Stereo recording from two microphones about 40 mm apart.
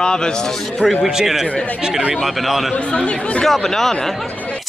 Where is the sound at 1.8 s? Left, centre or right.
Centre.